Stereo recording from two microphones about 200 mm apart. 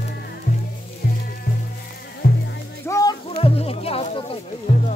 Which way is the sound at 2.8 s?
15° left (ahead or behind).